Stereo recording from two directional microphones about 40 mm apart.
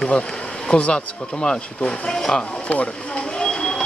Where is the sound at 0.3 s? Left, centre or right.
Centre.